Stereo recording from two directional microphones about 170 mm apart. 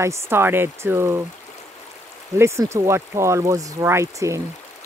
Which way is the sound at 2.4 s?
15° right (ahead or behind).